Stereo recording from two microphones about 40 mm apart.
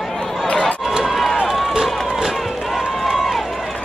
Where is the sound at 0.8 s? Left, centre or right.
Centre.